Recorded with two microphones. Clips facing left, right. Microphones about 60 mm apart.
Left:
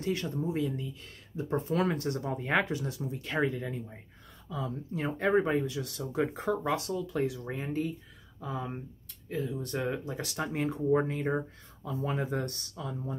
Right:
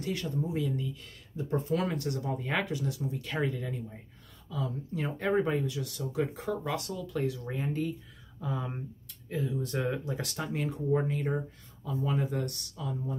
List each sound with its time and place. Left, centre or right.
0.0 s speech: left; by 10.3 s centre
10.5 s speech: left